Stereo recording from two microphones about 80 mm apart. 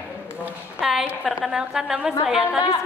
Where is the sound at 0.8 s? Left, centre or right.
Centre.